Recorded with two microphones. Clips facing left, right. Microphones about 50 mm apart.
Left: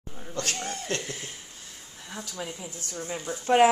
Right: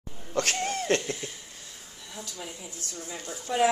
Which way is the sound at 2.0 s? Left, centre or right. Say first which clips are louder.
Left 4 dB; left.